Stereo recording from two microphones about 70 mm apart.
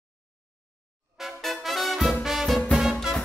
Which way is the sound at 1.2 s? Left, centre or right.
Centre.